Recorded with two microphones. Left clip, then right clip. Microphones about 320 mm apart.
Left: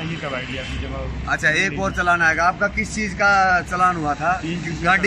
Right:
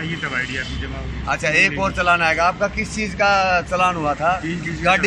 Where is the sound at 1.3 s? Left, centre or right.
Centre.